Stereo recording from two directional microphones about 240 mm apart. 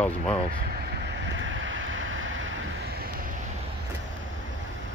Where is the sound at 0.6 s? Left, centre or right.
Right.